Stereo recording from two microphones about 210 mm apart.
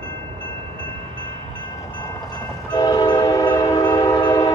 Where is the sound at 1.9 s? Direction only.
20° left (ahead or behind).